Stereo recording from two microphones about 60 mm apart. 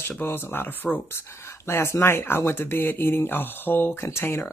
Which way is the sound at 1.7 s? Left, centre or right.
Left.